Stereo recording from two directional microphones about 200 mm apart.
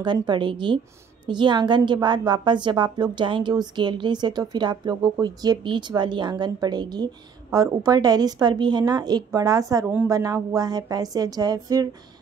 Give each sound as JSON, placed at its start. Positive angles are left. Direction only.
{"t": 0.0, "sound": "a woman's voice", "side_deg": -20}